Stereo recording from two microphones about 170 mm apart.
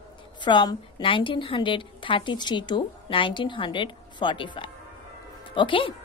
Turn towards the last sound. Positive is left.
turn(degrees=30)  # may be behind; listen again after turning